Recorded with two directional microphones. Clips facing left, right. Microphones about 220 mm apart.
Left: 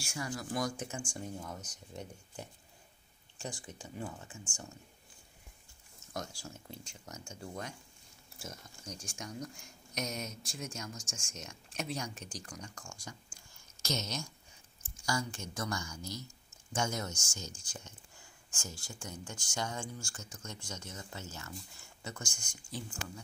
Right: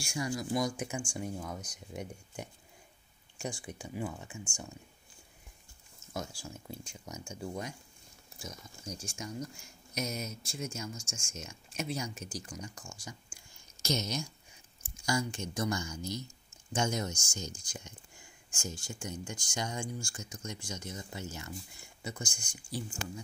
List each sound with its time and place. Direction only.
0.0 s speech: 15° right (ahead or behind)
6.1 s speech: 10° right (ahead or behind)
8.8 s speech: centre (ahead or behind)
22.3 s speech: 10° left (ahead or behind)